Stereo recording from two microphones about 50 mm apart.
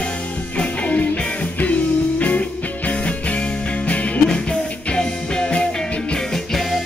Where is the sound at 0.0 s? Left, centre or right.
Left.